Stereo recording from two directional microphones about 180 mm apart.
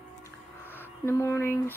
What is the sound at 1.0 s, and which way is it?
Speech, 15° left (ahead or behind).